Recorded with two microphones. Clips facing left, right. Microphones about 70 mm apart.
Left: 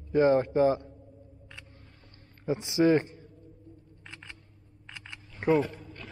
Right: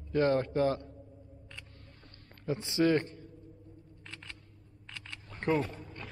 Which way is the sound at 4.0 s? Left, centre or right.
Centre.